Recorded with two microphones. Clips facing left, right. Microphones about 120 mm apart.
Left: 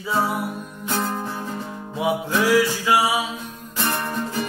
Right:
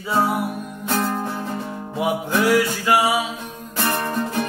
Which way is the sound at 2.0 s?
55° right (ahead or behind).